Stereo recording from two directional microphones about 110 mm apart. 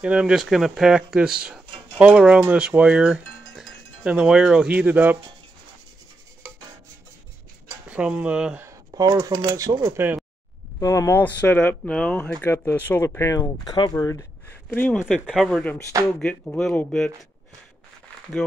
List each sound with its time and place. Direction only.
0.0 s speech: 10° right (ahead or behind)
3.5 s wind chime: 5° right (ahead or behind)
7.9 s speech: 10° right (ahead or behind)
8.9 s speech: 35° right (ahead or behind)
9.9 s speech: 15° right (ahead or behind)
10.8 s speech: 30° left (ahead or behind)
11.1 s speech: 15° left (ahead or behind)
14.7 s speech: 15° left (ahead or behind)
15.0 s speech: 5° right (ahead or behind)
16.2 s speech: 10° left (ahead or behind)